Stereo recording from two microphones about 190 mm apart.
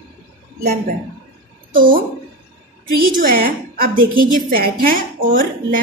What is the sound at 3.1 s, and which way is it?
A woman's voice, 50° right (ahead or behind).